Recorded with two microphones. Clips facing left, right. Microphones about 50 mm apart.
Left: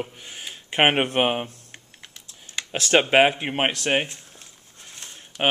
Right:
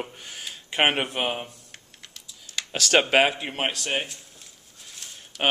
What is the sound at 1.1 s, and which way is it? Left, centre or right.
Speech, left.